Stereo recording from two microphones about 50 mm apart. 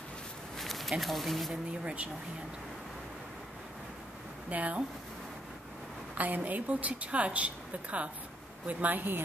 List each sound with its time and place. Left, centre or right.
0.6 s speech: centre
1.7 s a woman's voice: right
4.5 s speech: right
6.1 s a woman's voice: right